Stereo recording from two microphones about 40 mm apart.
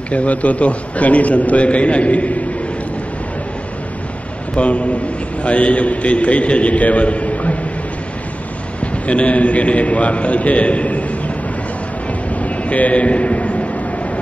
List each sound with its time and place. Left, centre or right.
0.1 s a man's voice: left
4.6 s a man's voice: left
9.0 s a man's voice: left
12.4 s a sound: left